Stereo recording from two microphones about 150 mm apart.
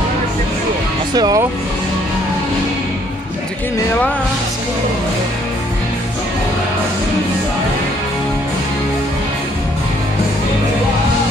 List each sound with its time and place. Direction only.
1.1 s speech: 25° right (ahead or behind)